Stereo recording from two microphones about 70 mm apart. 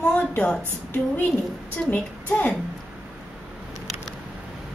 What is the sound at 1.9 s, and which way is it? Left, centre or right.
Speech, left.